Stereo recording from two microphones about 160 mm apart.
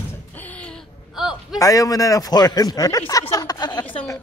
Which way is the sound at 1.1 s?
5° right (ahead or behind).